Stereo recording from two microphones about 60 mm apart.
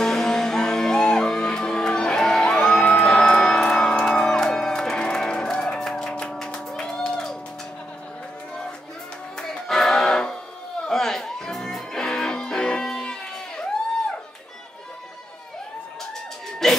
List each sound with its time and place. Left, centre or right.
0.0 s music: centre
9.4 s music: centre
16.6 s music: centre